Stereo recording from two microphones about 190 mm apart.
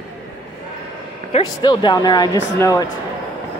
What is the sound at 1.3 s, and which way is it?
Speech, 25° left (ahead or behind).